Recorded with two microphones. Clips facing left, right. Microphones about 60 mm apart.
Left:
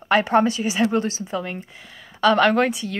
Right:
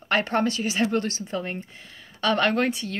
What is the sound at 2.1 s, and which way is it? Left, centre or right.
Speech, left.